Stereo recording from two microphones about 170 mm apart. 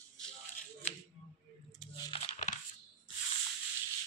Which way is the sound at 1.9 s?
25° left (ahead or behind).